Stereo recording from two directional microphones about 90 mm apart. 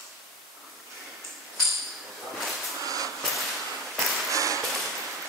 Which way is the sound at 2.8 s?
40° right (ahead or behind).